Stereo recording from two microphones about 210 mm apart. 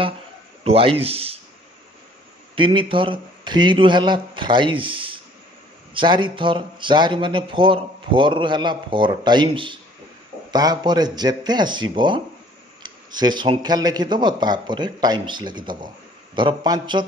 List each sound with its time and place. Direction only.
0.7 s speech: 25° right (ahead or behind)
2.5 s speech: 25° right (ahead or behind)